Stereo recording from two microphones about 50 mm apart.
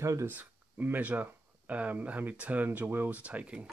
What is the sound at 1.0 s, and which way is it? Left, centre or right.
Speech, right.